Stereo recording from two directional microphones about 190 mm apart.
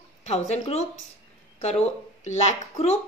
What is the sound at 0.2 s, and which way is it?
A woman's voice, 35° left (ahead or behind).